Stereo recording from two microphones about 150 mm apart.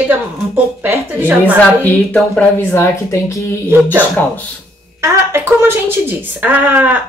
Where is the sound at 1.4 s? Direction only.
10° left (ahead or behind).